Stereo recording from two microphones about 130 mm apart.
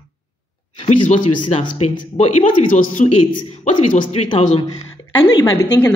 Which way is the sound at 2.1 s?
60° left (ahead or behind).